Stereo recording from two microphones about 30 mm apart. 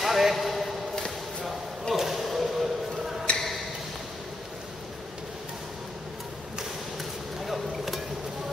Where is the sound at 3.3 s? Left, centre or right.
Left.